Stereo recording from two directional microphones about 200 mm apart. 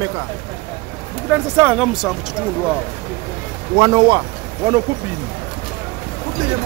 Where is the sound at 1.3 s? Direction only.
10° right (ahead or behind).